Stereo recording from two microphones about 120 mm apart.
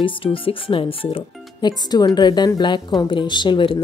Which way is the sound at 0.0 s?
50° left (ahead or behind).